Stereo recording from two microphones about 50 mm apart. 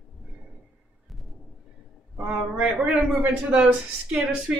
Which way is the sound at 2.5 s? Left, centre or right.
Right.